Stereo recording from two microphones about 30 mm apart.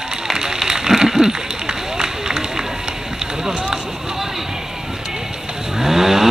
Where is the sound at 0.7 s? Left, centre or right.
Centre.